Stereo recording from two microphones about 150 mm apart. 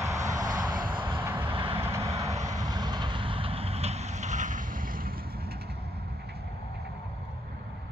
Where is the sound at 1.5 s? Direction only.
35° right (ahead or behind).